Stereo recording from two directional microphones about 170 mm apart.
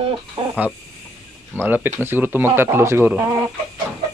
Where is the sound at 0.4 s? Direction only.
35° right (ahead or behind).